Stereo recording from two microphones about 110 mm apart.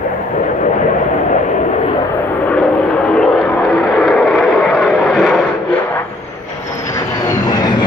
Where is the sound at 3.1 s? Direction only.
Centre (ahead or behind).